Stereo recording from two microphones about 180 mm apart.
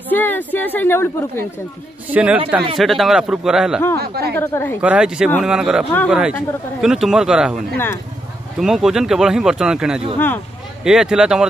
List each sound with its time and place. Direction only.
0.1 s a woman's voice: 10° left (ahead or behind)
2.0 s a man's voice: 10° right (ahead or behind)
4.0 s speech: 60° right (ahead or behind)
4.4 s a woman's voice: 10° left (ahead or behind)
4.8 s speech: 5° right (ahead or behind)
7.7 s a woman's voice: 10° left (ahead or behind)
8.5 s speech: centre (ahead or behind)
10.1 s a woman's voice: 10° left (ahead or behind)
10.8 s speech: 5° right (ahead or behind)